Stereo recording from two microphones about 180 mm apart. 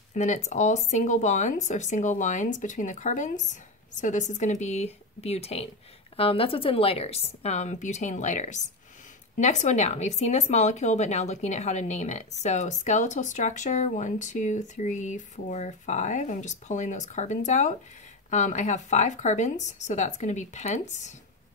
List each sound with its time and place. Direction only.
0.1 s speech: 40° left (ahead or behind)